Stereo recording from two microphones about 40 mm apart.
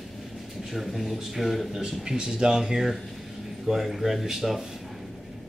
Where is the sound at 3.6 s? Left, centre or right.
Centre.